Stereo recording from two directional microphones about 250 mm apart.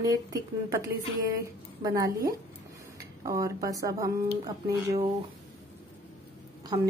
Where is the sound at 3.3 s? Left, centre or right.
Centre.